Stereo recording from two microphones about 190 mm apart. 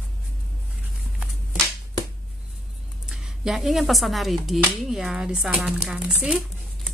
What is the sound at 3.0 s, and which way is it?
Speech, centre (ahead or behind).